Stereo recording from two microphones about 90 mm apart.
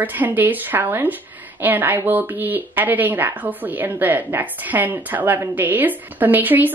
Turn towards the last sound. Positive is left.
turn(degrees=-20)  # may be behind; listen again after turning